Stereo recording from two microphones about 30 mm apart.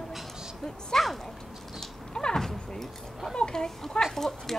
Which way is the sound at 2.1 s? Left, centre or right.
Left.